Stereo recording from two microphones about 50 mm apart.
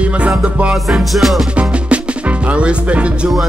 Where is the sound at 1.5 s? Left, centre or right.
Right.